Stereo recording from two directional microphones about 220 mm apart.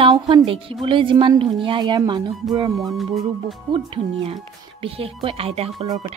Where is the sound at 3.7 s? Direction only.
20° right (ahead or behind).